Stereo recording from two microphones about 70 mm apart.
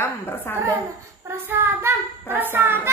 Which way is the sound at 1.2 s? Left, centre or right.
Right.